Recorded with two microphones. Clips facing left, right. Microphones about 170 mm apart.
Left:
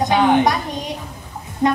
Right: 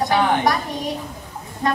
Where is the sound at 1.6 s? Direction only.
20° left (ahead or behind).